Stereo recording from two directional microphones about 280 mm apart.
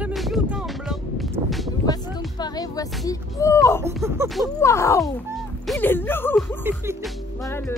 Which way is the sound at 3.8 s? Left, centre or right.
Centre.